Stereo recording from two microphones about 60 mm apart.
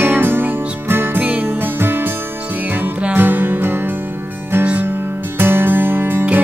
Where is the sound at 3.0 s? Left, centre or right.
Right.